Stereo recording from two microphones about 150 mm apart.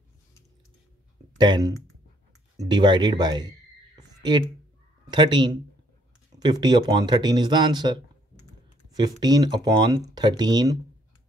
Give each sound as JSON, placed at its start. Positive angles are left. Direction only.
{"t": 1.4, "sound": "speech", "side_deg": -30}